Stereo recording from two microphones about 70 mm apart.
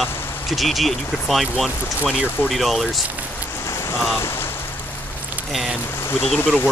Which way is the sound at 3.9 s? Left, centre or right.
Left.